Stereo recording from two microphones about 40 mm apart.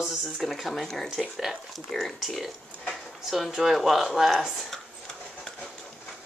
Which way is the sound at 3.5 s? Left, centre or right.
Centre.